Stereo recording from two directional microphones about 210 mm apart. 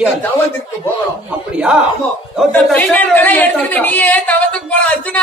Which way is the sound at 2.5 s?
5° left (ahead or behind).